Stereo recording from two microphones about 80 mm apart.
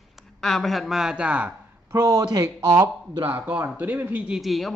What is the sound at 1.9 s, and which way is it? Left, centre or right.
Speech, right.